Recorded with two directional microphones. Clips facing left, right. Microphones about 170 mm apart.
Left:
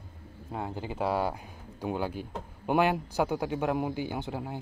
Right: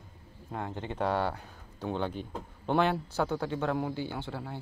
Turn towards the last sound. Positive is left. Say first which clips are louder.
# left 3 dB
turn(degrees=15)  # may be behind; listen again after turning